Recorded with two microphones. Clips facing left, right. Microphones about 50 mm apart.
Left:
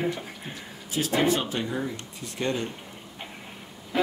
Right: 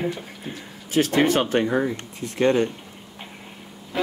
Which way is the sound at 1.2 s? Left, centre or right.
Right.